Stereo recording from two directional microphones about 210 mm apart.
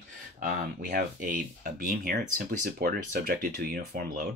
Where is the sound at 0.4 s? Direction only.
40° right (ahead or behind).